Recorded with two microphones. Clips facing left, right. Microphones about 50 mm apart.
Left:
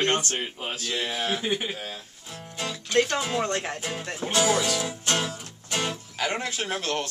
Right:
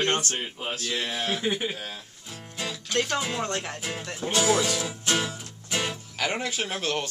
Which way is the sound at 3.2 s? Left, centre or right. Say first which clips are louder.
Left 3 dB; centre.